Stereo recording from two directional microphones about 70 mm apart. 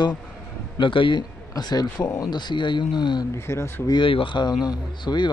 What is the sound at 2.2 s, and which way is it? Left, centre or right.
Speech, left.